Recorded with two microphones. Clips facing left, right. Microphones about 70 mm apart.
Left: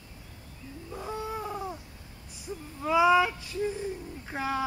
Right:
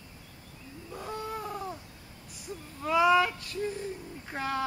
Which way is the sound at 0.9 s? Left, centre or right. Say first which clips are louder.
Left 2 dB; centre.